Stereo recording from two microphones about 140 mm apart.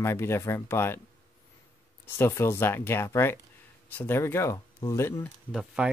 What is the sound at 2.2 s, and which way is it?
Speech, 20° left (ahead or behind).